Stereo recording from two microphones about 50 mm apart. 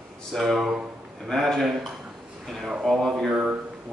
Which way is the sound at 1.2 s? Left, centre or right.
Centre.